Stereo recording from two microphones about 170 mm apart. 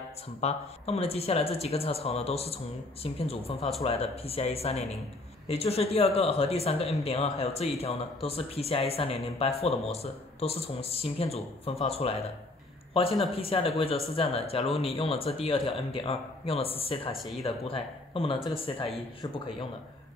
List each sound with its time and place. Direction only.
0.4 s speech: 40° left (ahead or behind)
17.1 s speech: centre (ahead or behind)
17.4 s speech: 30° left (ahead or behind)